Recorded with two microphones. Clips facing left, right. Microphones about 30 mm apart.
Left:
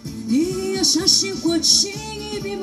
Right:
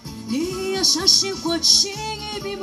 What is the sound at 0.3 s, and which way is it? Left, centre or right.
Music, centre.